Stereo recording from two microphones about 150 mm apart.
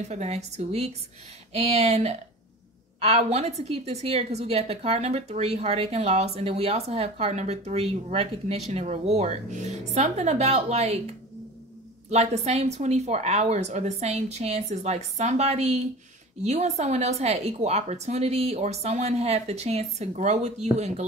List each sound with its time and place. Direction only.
0.1 s a woman's voice: 45° right (ahead or behind)
12.1 s a woman's voice: 45° right (ahead or behind)